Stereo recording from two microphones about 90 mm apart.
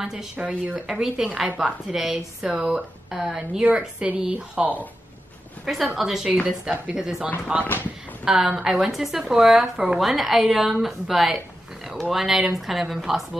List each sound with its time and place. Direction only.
0.0 s a woman's voice: 5° right (ahead or behind)
5.9 s speech: 5° right (ahead or behind)
7.6 s speech: 20° left (ahead or behind)
8.3 s speech: 10° right (ahead or behind)